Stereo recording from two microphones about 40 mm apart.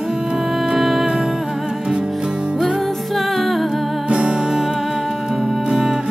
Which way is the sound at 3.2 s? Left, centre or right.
Centre.